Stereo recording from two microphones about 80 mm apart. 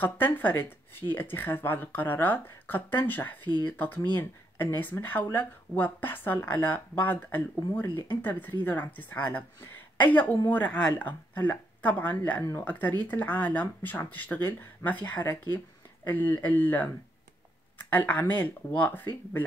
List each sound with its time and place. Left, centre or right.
0.0 s speech: left